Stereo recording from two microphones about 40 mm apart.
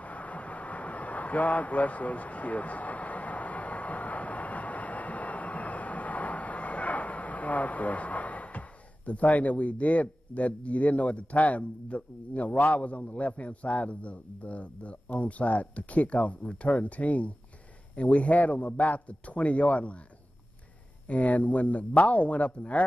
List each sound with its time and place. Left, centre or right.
0.0 s a sound: left
16.6 s speech: left
21.1 s speech: left